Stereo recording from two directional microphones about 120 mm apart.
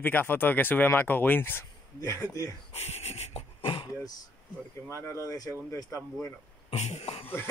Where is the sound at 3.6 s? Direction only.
45° left (ahead or behind).